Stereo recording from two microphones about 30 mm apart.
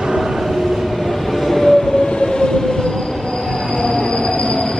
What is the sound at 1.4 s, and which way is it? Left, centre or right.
Train, centre.